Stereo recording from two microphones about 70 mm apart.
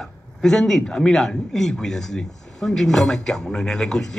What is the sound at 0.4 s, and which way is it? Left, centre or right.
A woman's voice, centre.